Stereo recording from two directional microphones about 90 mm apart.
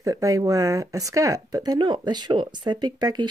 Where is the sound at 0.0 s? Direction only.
40° right (ahead or behind).